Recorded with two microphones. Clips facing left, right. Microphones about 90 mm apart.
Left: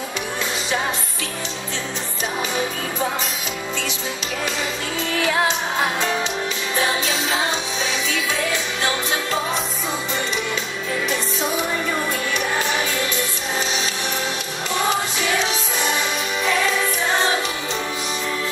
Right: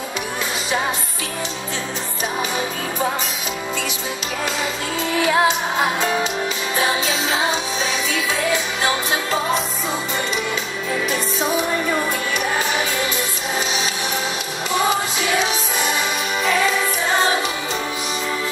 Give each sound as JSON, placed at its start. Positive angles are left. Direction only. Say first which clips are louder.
{"t": 5.2, "sound": "music", "louder": "right 3 dB", "side_deg": -10}
{"t": 8.8, "sound": "music", "louder": "even", "side_deg": -5}